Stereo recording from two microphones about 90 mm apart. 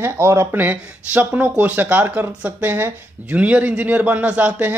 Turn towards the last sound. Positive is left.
turn(degrees=-15)  # may be behind; listen again after turning